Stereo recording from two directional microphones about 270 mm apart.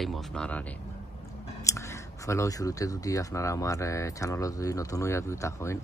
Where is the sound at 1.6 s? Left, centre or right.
Centre.